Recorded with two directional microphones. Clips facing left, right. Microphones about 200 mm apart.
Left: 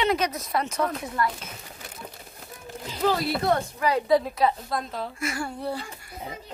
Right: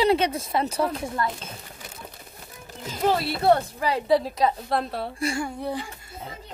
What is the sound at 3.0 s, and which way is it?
A woman's voice, 25° right (ahead or behind).